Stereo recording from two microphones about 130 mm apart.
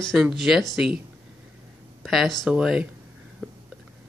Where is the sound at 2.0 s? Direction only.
Centre (ahead or behind).